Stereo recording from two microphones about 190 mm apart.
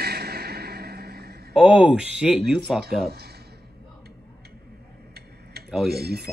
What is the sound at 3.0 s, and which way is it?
Speech, 55° right (ahead or behind).